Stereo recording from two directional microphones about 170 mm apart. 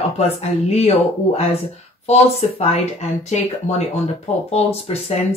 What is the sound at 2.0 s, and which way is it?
Speech, 40° left (ahead or behind).